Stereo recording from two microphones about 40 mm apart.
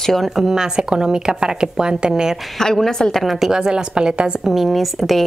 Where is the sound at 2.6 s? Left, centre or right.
Centre.